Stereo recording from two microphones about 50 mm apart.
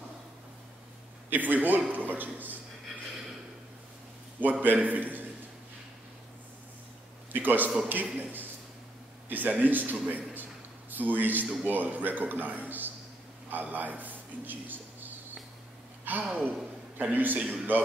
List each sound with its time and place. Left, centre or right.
1.3 s speech: right
4.4 s speech: right
7.3 s a man's voice: right